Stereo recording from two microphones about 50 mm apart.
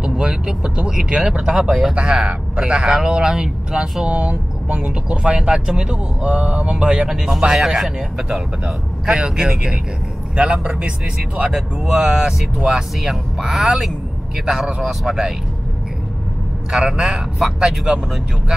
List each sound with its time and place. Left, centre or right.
0.0 s a man's voice: centre
2.0 s speech: centre
9.2 s speech: centre
16.7 s speech: centre